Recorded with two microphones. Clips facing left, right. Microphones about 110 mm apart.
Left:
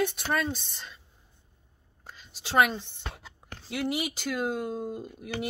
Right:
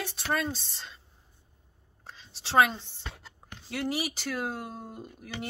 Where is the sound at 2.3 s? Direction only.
30° right (ahead or behind).